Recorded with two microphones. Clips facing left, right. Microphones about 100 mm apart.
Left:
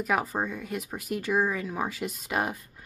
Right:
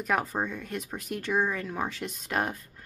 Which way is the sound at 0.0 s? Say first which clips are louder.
Left 1 dB; 5° left (ahead or behind).